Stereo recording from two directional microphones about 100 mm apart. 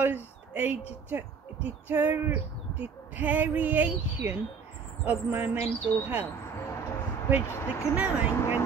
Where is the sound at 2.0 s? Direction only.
20° right (ahead or behind).